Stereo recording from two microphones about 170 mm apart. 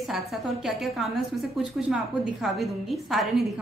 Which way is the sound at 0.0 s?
Centre (ahead or behind).